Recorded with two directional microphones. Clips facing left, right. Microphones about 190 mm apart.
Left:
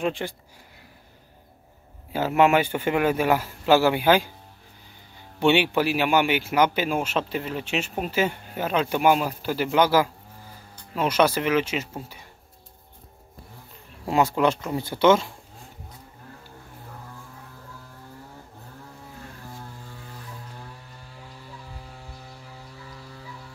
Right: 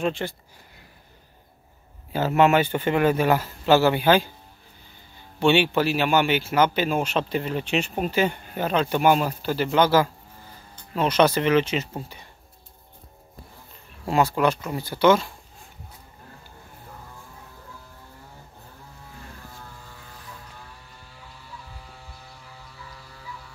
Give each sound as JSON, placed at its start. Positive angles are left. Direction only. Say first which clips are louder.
{"t": 0.0, "sound": "speech", "louder": "right 1 dB", "side_deg": 15}
{"t": 2.1, "sound": "speech", "louder": "right 1 dB", "side_deg": 10}
{"t": 5.4, "sound": "speech", "louder": "right 1 dB", "side_deg": 15}
{"t": 14.0, "sound": "speech", "louder": "even", "side_deg": 20}